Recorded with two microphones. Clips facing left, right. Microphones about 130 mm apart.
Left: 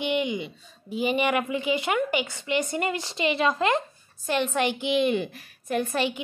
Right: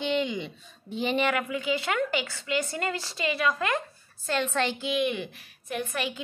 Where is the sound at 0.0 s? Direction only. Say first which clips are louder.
Left 1 dB; 15° left (ahead or behind).